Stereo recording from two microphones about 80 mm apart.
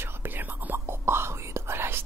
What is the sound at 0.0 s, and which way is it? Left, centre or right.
Whispering, right.